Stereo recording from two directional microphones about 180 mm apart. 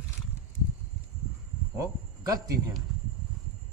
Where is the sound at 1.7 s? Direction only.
20° right (ahead or behind).